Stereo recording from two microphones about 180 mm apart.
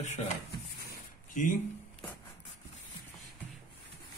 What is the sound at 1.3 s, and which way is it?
Speech, 45° left (ahead or behind).